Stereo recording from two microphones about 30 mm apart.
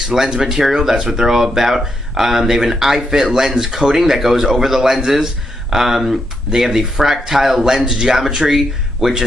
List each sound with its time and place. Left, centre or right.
0.1 s speech: centre
8.5 s speech: centre